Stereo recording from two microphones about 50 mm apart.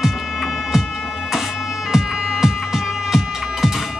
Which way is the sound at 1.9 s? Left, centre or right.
Centre.